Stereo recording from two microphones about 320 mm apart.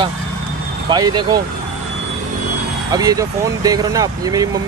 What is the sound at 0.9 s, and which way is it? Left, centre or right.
Speech, centre.